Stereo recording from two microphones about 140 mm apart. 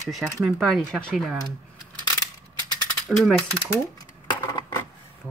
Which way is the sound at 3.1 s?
5° left (ahead or behind).